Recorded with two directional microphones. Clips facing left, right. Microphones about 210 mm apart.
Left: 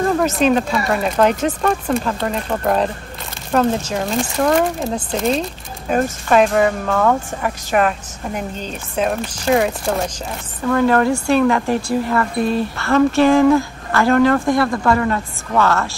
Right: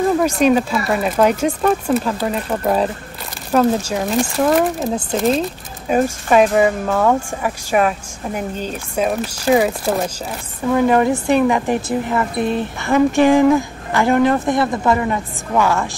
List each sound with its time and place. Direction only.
0.2 s speech: 5° right (ahead or behind)